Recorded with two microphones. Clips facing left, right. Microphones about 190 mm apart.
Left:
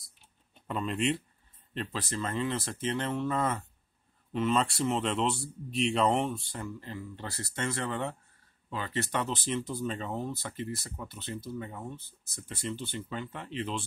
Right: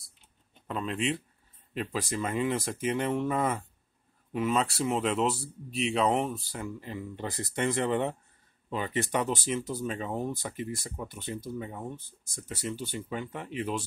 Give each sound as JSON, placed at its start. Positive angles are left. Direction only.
{"t": 0.7, "sound": "speech", "side_deg": 0}